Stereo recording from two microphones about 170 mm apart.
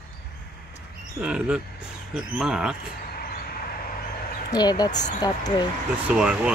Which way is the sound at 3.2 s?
60° left (ahead or behind).